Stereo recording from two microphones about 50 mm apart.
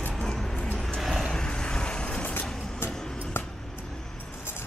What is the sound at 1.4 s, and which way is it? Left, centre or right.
Vehicle, centre.